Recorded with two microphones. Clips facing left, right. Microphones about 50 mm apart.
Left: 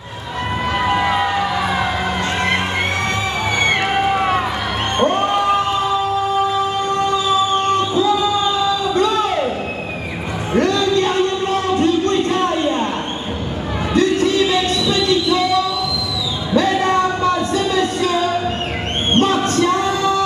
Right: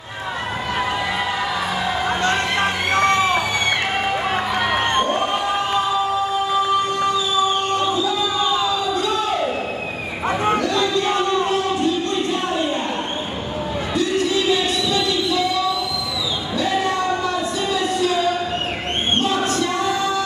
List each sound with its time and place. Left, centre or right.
0.8 s a sound: left
11.5 s music: left
16.5 s music: left
19.1 s music: left